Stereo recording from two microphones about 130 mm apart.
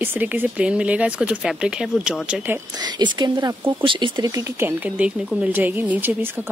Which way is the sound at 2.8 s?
35° right (ahead or behind).